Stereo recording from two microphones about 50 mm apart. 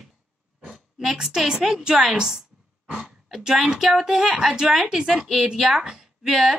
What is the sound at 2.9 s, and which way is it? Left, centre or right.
Gasp, centre.